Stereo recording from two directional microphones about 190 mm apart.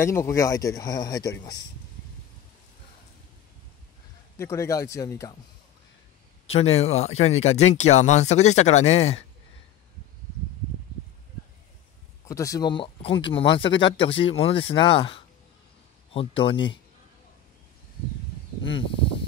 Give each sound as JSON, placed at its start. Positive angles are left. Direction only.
{"t": 0.0, "sound": "speech", "side_deg": 15}
{"t": 4.4, "sound": "speech", "side_deg": 15}
{"t": 6.4, "sound": "speech", "side_deg": 35}
{"t": 12.3, "sound": "speech", "side_deg": 15}